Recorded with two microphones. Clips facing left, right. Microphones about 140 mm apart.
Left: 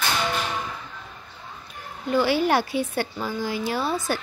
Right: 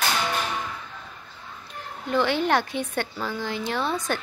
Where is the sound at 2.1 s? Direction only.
5° left (ahead or behind).